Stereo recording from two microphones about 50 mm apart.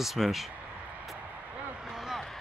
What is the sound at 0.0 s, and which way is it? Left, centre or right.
Speech, centre.